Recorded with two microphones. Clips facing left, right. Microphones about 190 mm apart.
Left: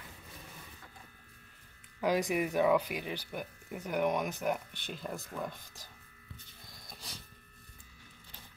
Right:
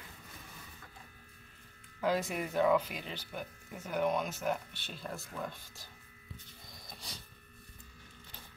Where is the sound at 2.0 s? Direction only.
15° left (ahead or behind).